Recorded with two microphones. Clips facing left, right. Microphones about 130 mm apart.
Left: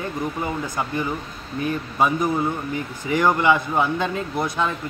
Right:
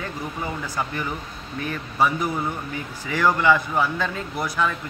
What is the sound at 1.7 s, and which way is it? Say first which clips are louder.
Speech: left 1 dB; 20° left (ahead or behind).